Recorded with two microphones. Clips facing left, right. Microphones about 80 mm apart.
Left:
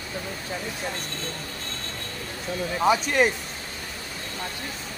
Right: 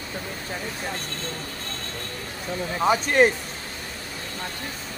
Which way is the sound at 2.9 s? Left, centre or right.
Right.